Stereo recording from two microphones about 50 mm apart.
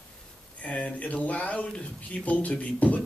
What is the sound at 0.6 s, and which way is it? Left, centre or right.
Speech, left.